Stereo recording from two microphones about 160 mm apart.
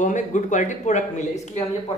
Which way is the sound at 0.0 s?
50° left (ahead or behind).